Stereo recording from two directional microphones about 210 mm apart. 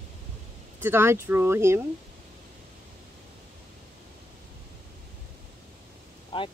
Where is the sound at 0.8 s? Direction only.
10° right (ahead or behind).